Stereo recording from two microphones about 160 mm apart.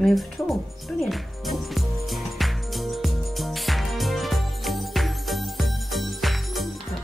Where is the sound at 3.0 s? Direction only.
Centre (ahead or behind).